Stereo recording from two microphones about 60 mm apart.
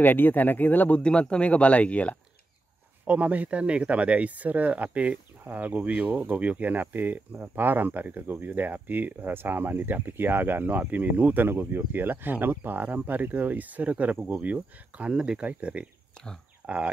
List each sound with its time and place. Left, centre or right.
0.0 s speech: left
3.1 s speech: right